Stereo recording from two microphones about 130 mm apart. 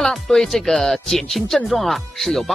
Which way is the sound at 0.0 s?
5° left (ahead or behind).